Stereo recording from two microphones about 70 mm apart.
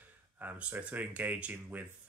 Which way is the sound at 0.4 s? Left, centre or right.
Right.